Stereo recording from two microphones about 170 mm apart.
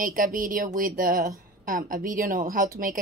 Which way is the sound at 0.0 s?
55° right (ahead or behind).